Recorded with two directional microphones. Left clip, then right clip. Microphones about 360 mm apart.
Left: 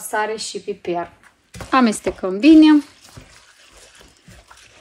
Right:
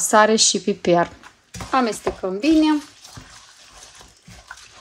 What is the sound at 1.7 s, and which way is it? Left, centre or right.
Speech, left.